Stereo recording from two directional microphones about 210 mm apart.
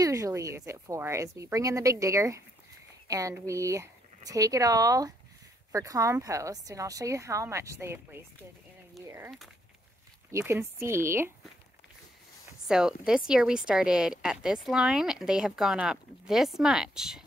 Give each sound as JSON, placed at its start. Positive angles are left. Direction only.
{"t": 0.0, "sound": "speech", "side_deg": -15}
{"t": 10.3, "sound": "speech", "side_deg": -15}
{"t": 12.6, "sound": "speech", "side_deg": -5}